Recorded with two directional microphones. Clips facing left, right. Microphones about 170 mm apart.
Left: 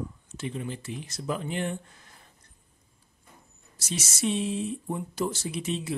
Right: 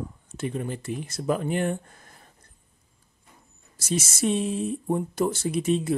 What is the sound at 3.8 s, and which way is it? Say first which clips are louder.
Speech: right 5 dB; 50° right (ahead or behind).